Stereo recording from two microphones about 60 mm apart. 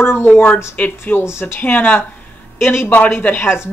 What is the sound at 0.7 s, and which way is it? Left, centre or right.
Speech, left.